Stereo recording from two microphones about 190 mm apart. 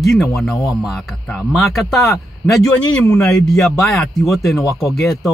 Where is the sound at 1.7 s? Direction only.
Centre (ahead or behind).